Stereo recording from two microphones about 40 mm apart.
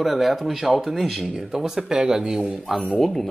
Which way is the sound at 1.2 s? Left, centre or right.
Centre.